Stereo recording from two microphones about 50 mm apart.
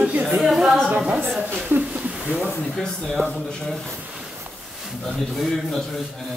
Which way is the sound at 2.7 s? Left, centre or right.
Centre.